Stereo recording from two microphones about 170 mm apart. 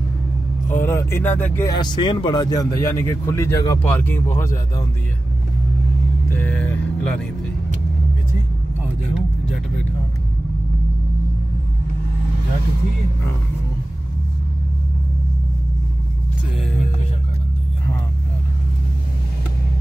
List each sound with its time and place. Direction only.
0.7 s speech: 15° left (ahead or behind)
1.7 s speech: 25° left (ahead or behind)
6.3 s speech: 10° left (ahead or behind)